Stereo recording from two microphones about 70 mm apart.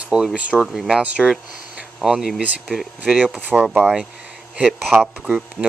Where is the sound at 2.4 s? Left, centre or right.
Right.